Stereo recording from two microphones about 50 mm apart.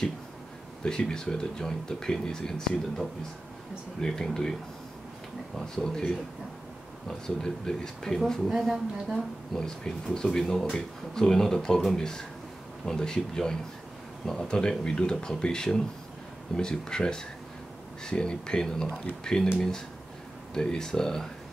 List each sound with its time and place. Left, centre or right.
0.8 s speech: centre
5.8 s speech: centre
8.5 s speech: centre
9.6 s speech: centre